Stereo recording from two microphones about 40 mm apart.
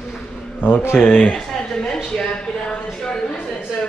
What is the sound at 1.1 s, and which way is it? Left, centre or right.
Speech, left.